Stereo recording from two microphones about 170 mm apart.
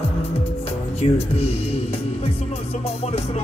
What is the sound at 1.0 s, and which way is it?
Speech, 35° left (ahead or behind).